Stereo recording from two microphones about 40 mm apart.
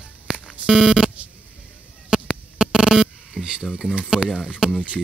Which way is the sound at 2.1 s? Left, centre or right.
Right.